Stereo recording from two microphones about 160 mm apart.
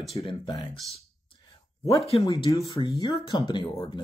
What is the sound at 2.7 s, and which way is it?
Speech, 35° left (ahead or behind).